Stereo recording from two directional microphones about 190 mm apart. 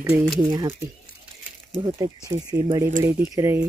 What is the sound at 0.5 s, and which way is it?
Speech, 20° right (ahead or behind).